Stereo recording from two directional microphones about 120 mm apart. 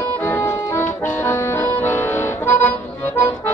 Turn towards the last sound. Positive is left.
turn(degrees=20)  # may be behind; listen again after turning